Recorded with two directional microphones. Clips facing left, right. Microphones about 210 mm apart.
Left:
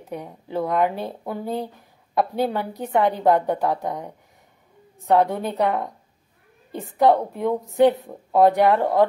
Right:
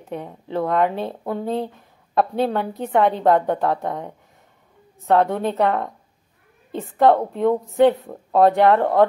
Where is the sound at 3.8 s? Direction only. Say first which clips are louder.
Right 1 dB; 15° left (ahead or behind).